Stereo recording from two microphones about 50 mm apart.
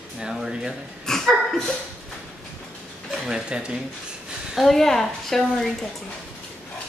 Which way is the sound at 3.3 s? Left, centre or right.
Centre.